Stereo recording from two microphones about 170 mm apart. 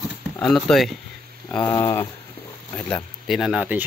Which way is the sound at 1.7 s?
15° left (ahead or behind).